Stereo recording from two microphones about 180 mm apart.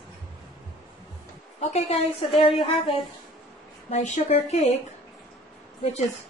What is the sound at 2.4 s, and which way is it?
A woman's voice, 30° left (ahead or behind).